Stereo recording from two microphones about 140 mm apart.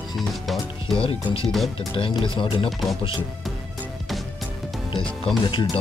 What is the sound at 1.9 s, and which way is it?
Speech, 40° left (ahead or behind).